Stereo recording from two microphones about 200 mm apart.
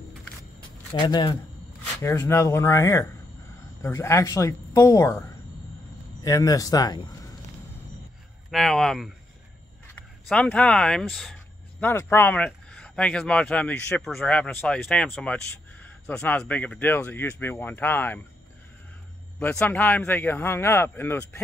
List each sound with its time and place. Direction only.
1.0 s speech: 20° left (ahead or behind)
6.2 s speech: 15° left (ahead or behind)
8.5 s speech: centre (ahead or behind)
10.2 s speech: 5° left (ahead or behind)
11.8 s speech: 10° left (ahead or behind)
19.4 s speech: 10° left (ahead or behind)